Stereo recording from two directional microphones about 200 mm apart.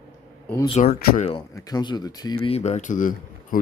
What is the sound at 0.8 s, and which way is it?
Speech, 50° left (ahead or behind).